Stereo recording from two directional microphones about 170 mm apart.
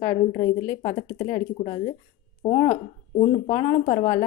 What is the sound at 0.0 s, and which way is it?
A woman's voice, 35° left (ahead or behind).